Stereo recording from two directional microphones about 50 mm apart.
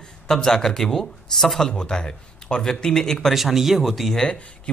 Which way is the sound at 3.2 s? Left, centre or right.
Centre.